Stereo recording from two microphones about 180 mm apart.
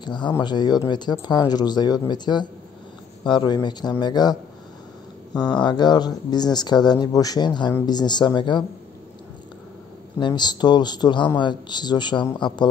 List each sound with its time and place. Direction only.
0.0 s a man's voice: 25° left (ahead or behind)
5.6 s a man's voice: 25° left (ahead or behind)
10.1 s a man's voice: 25° left (ahead or behind)